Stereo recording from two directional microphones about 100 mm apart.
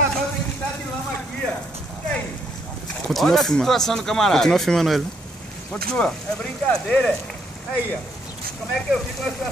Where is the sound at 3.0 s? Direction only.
5° left (ahead or behind).